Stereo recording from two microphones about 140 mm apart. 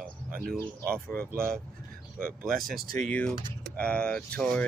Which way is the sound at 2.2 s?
90° right.